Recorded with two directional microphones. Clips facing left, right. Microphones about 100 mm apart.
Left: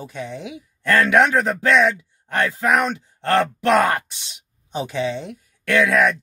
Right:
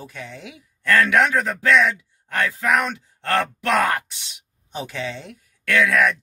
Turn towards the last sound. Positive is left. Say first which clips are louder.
# left 2 dB
turn(degrees=25)  # may be behind; listen again after turning